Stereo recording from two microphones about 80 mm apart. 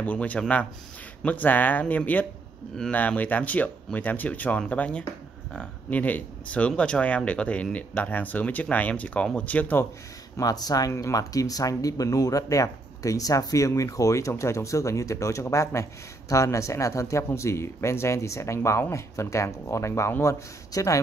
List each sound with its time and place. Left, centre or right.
0.0 s speech: centre
10.3 s speech: left
10.9 s speech: left